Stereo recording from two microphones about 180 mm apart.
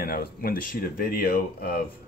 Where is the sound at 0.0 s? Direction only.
55° left (ahead or behind).